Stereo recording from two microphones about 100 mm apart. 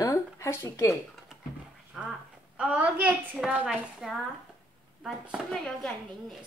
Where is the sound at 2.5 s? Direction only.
10° right (ahead or behind).